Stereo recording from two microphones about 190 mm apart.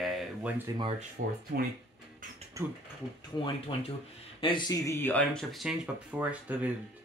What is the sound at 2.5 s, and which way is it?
Speech, 15° right (ahead or behind).